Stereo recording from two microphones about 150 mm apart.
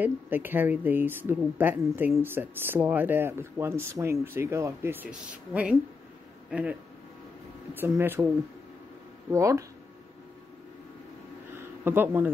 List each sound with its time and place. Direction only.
0.0 s speech: 15° right (ahead or behind)
7.8 s speech: 15° right (ahead or behind)
9.3 s speech: 20° right (ahead or behind)
11.5 s a sound: 15° right (ahead or behind)